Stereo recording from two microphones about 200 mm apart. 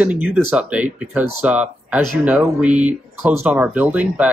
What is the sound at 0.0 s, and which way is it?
Speech, 5° right (ahead or behind).